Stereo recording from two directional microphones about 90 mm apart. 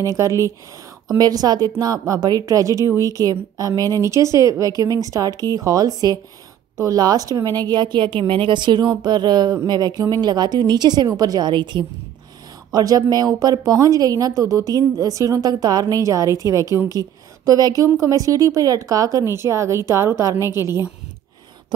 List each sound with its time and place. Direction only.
1.1 s speech: 45° right (ahead or behind); by 11.8 s 60° right (ahead or behind)
12.7 s a woman's voice: 45° right (ahead or behind)